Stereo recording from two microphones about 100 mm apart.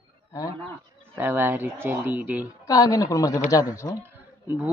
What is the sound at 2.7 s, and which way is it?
A man's voice, 40° left (ahead or behind).